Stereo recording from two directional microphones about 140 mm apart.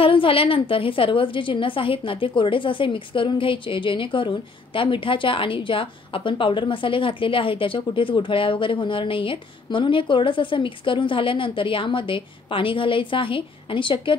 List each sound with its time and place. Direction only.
0.0 s a woman's voice: 40° left (ahead or behind)